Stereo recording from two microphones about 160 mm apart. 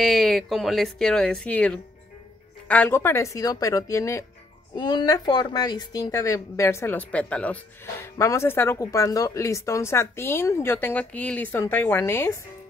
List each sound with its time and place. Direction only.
0.0 s speech: centre (ahead or behind); by 12.4 s 15° left (ahead or behind)